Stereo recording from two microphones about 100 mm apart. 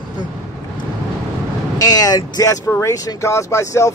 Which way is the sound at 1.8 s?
40° left (ahead or behind).